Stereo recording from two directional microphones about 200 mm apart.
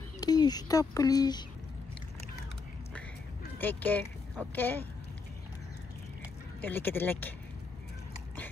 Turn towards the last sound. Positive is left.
turn(degrees=10)  # may be behind; listen again after turning